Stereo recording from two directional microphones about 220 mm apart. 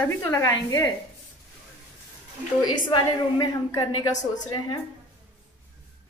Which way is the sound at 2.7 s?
20° left (ahead or behind).